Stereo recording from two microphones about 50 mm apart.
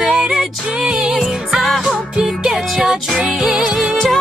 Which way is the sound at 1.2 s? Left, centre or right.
Centre.